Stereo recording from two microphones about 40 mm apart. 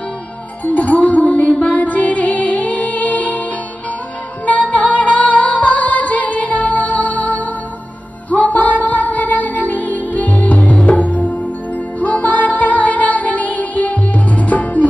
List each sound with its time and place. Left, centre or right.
0.7 s music: left
4.5 s music: left